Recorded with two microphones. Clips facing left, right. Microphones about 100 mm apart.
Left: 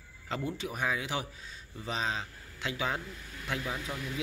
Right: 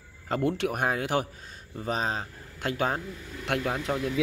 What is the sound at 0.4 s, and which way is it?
Speech, 70° right (ahead or behind).